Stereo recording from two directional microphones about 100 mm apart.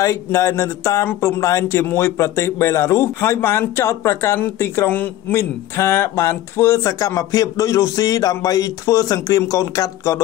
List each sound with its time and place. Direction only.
0.0 s a man's voice: 30° left (ahead or behind)